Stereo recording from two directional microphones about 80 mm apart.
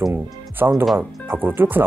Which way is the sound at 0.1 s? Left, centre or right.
Right.